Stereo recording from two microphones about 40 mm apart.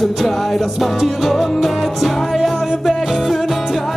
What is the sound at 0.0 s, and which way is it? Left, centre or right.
Music, centre.